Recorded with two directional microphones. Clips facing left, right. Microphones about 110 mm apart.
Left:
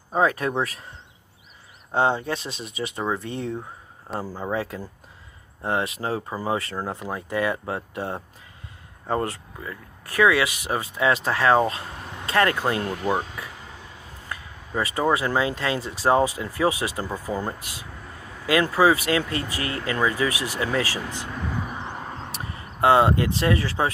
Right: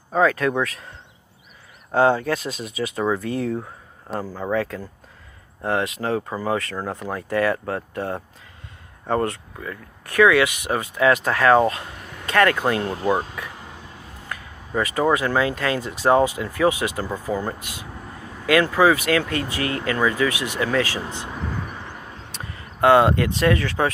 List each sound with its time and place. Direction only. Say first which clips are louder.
0.1 s speech: right 3 dB; 25° left (ahead or behind)
2.0 s speech: right 4 dB; 20° left (ahead or behind)
2.6 s speech: right 4 dB; centre (ahead or behind)
4.2 s speech: right 4 dB; 10° left (ahead or behind); by 6.2 s 30° left (ahead or behind)
6.3 s speech: right 2 dB; 15° left (ahead or behind)
9.3 s speech: right 3 dB; 30° left (ahead or behind)
12.6 s speech: right 3 dB; 25° right (ahead or behind)
14.8 s speech: right 2 dB; 30° left (ahead or behind)
17.3 s speech: right 3 dB; 15° left (ahead or behind)
17.6 s speech: right 3 dB; 30° left (ahead or behind)
21.3 s vehicle: even; centre (ahead or behind)
21.9 s vehicle: left 5 dB; 40° left (ahead or behind)
22.8 s speech: right 2 dB; 30° left (ahead or behind)